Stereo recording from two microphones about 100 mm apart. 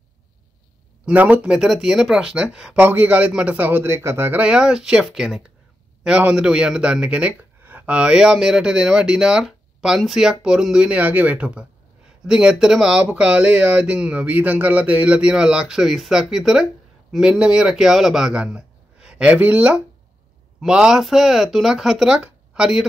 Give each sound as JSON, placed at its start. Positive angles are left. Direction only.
{"t": 1.0, "sound": "speech", "side_deg": -15}
{"t": 4.4, "sound": "a man's voice", "side_deg": -10}